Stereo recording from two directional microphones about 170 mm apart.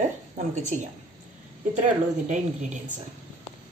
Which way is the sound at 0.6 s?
45° right (ahead or behind).